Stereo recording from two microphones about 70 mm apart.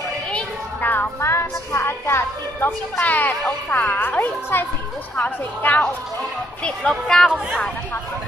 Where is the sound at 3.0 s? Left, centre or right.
Left.